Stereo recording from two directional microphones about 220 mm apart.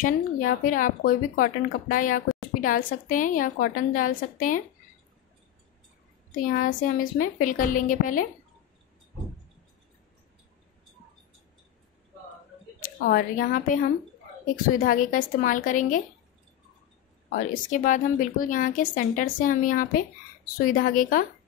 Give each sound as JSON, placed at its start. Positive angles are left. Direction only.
{"t": 0.0, "sound": "speech", "side_deg": 35}
{"t": 6.3, "sound": "speech", "side_deg": 35}
{"t": 12.8, "sound": "speech", "side_deg": 40}
{"t": 14.8, "sound": "speech", "side_deg": 40}
{"t": 17.3, "sound": "speech", "side_deg": 35}